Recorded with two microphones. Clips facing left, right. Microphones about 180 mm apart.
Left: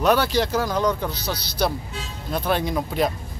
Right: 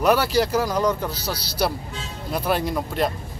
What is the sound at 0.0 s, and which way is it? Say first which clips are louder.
Speech: right 1 dB; 5° right (ahead or behind).